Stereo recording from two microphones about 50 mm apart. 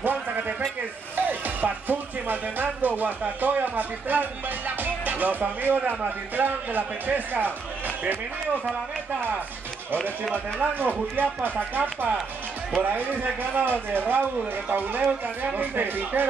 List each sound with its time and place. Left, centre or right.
0.0 s a sound: right
1.1 s speech: right
10.3 s speech: right